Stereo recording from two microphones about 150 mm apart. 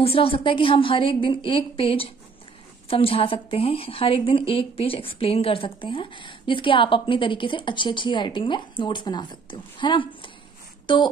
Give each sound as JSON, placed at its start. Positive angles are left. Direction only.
{"t": 0.0, "sound": "a woman's voice", "side_deg": 40}